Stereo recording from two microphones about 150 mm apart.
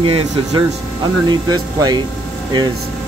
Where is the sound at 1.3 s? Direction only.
25° right (ahead or behind).